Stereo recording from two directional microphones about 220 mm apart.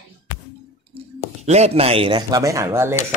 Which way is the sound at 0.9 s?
30° right (ahead or behind).